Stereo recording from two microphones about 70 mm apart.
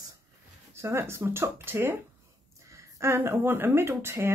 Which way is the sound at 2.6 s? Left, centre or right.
Right.